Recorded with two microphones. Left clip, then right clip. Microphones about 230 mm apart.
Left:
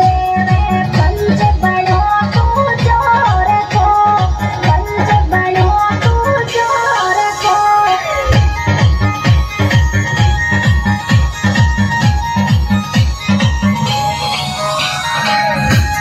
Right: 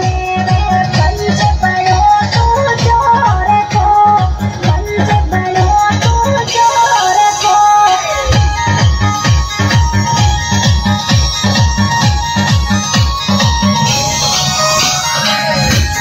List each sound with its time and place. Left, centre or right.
0.7 s music: right